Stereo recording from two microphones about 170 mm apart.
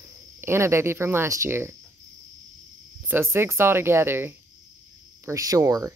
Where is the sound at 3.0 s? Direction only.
15° right (ahead or behind).